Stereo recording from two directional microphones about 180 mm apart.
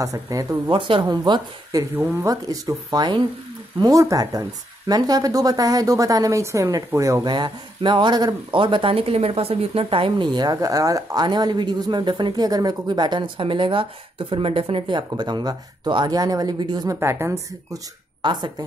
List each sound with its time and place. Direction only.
0.0 s speech: 20° right (ahead or behind)